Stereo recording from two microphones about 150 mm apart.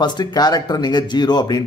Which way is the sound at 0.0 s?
30° left (ahead or behind).